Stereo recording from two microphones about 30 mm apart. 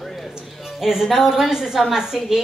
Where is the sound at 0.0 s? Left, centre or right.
Centre.